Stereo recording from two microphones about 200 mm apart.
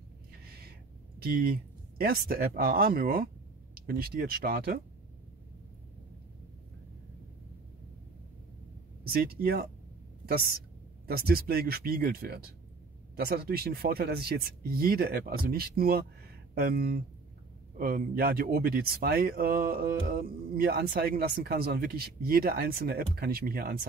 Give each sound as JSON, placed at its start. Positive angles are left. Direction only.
{"t": 2.0, "sound": "speech", "side_deg": -50}
{"t": 9.0, "sound": "speech", "side_deg": -50}
{"t": 11.1, "sound": "speech", "side_deg": -50}